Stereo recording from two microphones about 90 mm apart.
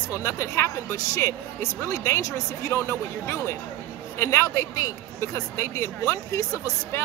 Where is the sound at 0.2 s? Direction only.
35° left (ahead or behind).